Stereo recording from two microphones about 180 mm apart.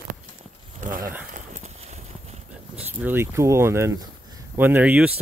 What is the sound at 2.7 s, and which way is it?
Speech, 10° right (ahead or behind).